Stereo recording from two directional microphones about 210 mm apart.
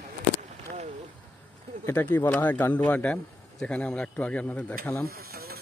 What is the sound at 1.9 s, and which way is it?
Speech, 10° left (ahead or behind).